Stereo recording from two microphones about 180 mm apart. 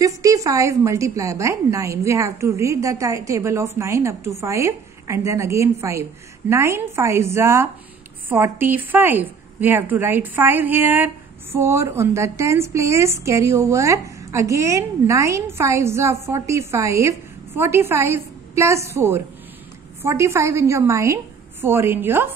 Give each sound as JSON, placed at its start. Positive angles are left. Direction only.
{"t": 0.0, "sound": "a woman's voice", "side_deg": -20}